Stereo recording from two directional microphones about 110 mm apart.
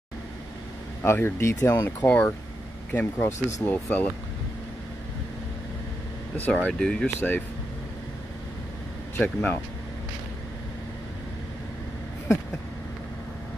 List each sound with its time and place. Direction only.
1.0 s speech: 20° left (ahead or behind)
3.3 s speech: 90° left
3.6 s speech: 15° left (ahead or behind)
6.3 s speech: 15° left (ahead or behind)
9.2 s speech: 15° left (ahead or behind)